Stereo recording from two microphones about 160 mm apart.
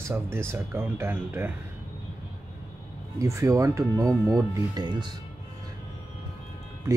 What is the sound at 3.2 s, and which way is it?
Speech, 20° right (ahead or behind).